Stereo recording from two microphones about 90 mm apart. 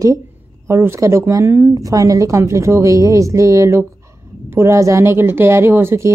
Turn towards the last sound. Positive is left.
turn(degrees=-25)  # may be behind; listen again after turning